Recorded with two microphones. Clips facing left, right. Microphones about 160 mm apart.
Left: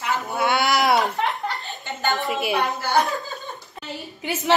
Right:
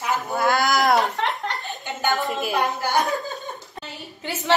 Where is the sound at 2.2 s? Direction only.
5° left (ahead or behind).